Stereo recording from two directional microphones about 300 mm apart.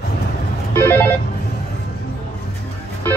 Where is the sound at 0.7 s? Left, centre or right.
Centre.